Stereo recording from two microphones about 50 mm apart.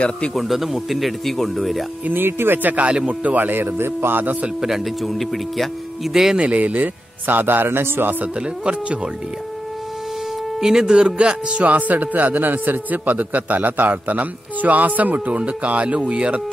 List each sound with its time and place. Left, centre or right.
0.3 s speech: centre
2.0 s speech: right
2.7 s speech: right
4.6 s speech: centre
6.3 s speech: right
6.6 s speech: right
8.4 s speech: right
10.6 s speech: centre